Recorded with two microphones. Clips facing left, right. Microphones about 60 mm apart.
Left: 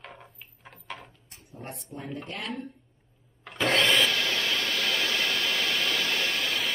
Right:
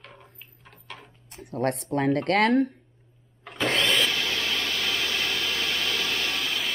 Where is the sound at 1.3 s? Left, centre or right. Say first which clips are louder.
Right 15 dB; right.